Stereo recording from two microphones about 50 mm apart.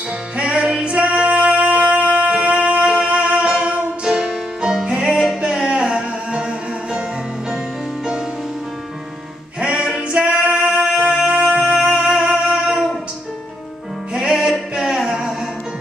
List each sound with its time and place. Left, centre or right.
0.4 s music: right
9.6 s music: right
14.1 s music: centre